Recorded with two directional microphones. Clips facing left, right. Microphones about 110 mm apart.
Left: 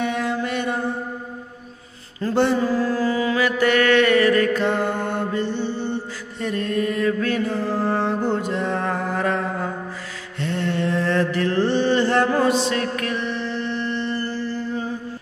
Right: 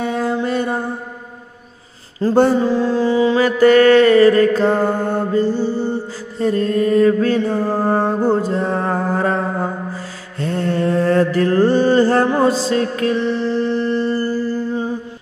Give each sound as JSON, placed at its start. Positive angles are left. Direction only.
{"t": 0.0, "sound": "mantra", "side_deg": -35}
{"t": 2.2, "sound": "mantra", "side_deg": -35}
{"t": 2.5, "sound": "a sound", "side_deg": -25}
{"t": 6.4, "sound": "mantra", "side_deg": -35}
{"t": 12.3, "sound": "a sound", "side_deg": -20}
{"t": 12.5, "sound": "mantra", "side_deg": -30}